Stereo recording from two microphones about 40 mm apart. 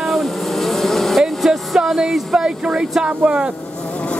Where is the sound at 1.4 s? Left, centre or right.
Centre.